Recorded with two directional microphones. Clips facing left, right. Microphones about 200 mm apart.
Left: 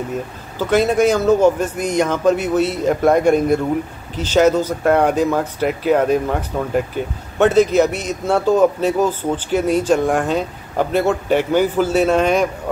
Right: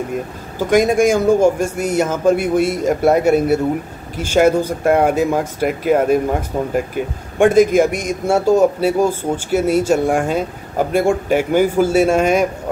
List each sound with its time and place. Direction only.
0.6 s a man's voice: 10° right (ahead or behind)
6.5 s speech: 25° right (ahead or behind)
7.0 s a man's voice: 10° right (ahead or behind)